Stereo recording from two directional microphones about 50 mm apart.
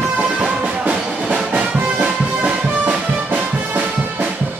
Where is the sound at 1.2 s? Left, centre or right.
Right.